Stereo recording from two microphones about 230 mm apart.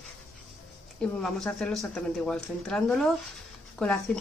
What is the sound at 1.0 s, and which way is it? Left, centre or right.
Speech, centre.